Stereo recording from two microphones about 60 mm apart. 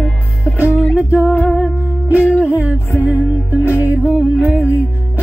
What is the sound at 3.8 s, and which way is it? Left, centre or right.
Music, right.